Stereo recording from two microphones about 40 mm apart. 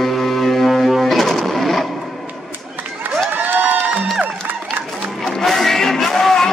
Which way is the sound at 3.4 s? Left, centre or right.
Right.